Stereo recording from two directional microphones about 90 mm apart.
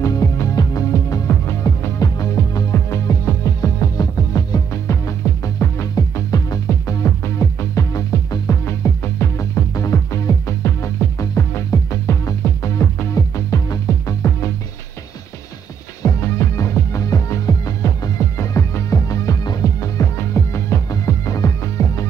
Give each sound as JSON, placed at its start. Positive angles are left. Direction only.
{"t": 0.0, "sound": "music", "side_deg": 40}
{"t": 16.0, "sound": "music", "side_deg": 35}